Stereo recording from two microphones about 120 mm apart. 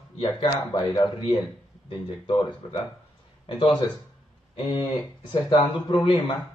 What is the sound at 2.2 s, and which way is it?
Speech, 45° left (ahead or behind).